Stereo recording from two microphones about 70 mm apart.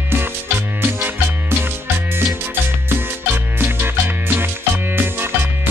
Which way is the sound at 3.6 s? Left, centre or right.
Right.